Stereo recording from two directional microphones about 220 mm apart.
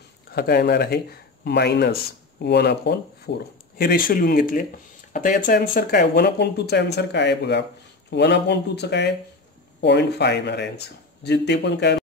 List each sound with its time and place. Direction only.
0.3 s speech: 45° left (ahead or behind)